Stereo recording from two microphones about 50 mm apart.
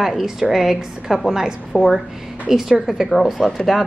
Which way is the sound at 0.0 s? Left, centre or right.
Centre.